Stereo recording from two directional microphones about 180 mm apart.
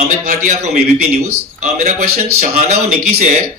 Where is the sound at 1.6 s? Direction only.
40° right (ahead or behind).